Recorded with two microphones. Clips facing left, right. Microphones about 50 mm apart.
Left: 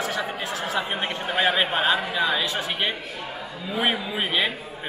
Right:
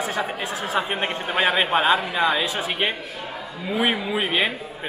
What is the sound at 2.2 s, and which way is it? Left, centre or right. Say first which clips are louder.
A man's voice: right 2 dB; centre.